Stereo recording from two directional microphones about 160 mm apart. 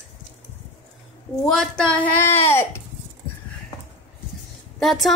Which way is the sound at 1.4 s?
Centre (ahead or behind).